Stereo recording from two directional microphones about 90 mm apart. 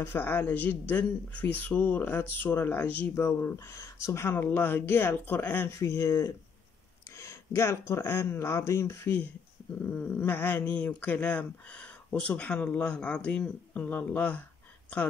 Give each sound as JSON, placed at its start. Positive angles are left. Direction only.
{"t": 0.0, "sound": "speech", "side_deg": 25}
{"t": 4.3, "sound": "speech", "side_deg": 25}
{"t": 5.8, "sound": "speech", "side_deg": 35}
{"t": 9.8, "sound": "speech", "side_deg": 15}